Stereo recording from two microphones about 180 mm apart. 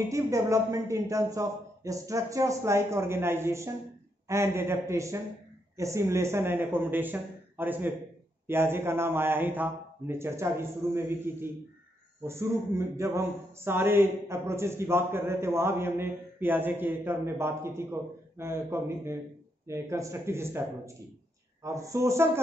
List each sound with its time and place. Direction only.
0.1 s a man's voice: 15° right (ahead or behind)